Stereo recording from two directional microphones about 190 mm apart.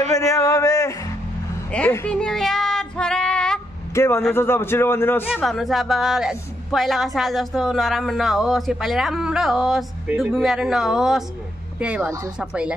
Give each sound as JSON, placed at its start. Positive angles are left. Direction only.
{"t": 0.3, "sound": "a sound", "side_deg": 15}
{"t": 1.7, "sound": "child singing", "side_deg": 10}
{"t": 3.9, "sound": "a man's voice", "side_deg": 15}
{"t": 5.2, "sound": "speech", "side_deg": -5}